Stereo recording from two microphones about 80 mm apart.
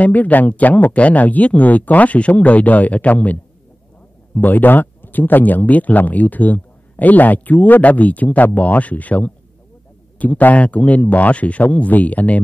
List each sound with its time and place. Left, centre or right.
0.0 s speech: centre